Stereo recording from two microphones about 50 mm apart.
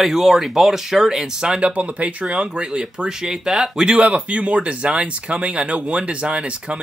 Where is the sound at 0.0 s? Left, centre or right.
Centre; by 2.1 s right.